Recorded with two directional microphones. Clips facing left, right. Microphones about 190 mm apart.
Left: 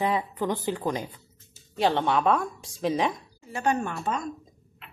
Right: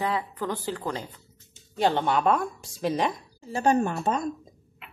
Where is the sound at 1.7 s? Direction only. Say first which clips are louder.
Even; centre (ahead or behind).